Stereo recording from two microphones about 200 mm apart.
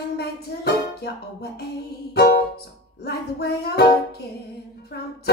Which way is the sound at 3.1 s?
55° left (ahead or behind).